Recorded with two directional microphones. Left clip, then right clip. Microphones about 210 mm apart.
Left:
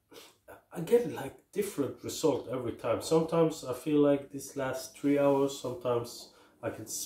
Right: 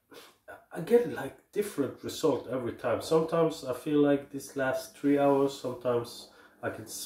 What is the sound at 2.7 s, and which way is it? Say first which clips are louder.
Speech: right 1 dB; 10° right (ahead or behind).